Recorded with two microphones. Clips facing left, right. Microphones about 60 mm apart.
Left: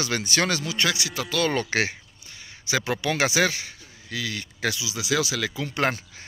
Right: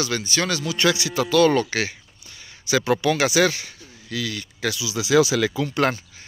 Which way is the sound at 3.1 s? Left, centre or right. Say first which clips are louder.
Right 3 dB; left.